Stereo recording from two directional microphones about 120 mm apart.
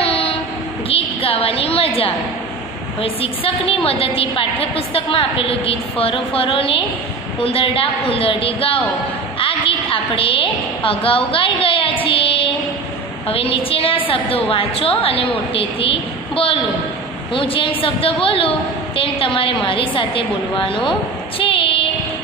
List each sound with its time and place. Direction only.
0.0 s child singing: 55° left (ahead or behind)
0.8 s a woman's voice: 50° left (ahead or behind)
21.4 s child singing: 50° left (ahead or behind)